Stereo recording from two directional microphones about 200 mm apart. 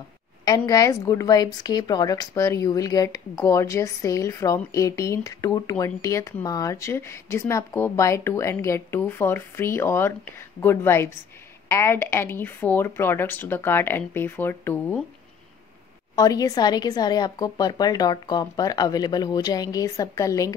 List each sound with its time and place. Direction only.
0.5 s a woman's voice: 15° left (ahead or behind)
16.2 s a woman's voice: 20° left (ahead or behind)